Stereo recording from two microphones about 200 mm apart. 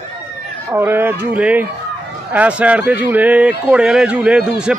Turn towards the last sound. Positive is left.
turn(degrees=-5)  # may be behind; listen again after turning